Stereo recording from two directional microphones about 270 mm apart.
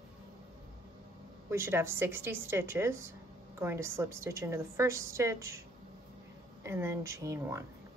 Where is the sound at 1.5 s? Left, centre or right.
Centre.